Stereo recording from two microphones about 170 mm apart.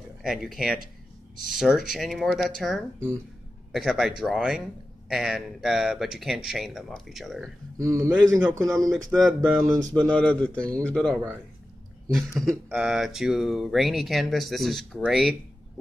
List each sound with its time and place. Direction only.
0.2 s speech: centre (ahead or behind)
7.8 s speech: 20° right (ahead or behind)
8.9 s a man's voice: 5° left (ahead or behind)
12.6 s speech: 5° right (ahead or behind)